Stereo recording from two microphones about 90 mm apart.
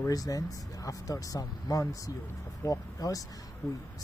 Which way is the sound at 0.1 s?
40° left (ahead or behind).